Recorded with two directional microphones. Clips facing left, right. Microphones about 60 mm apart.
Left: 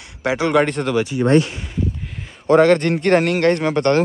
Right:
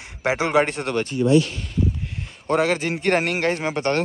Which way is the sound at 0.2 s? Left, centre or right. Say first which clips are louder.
Left 3 dB; right.